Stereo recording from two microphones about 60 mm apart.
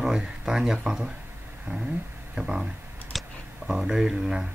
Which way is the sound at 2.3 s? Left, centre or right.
Centre.